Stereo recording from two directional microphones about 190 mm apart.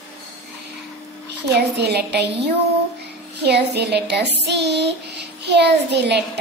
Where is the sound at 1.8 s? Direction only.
60° right (ahead or behind).